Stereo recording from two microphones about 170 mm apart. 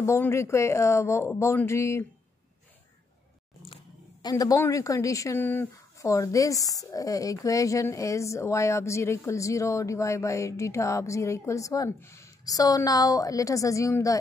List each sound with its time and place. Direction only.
0.0 s speech: 15° left (ahead or behind)
3.6 s speech: 25° left (ahead or behind)